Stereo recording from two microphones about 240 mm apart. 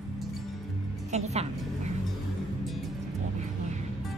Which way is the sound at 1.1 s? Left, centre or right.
Right.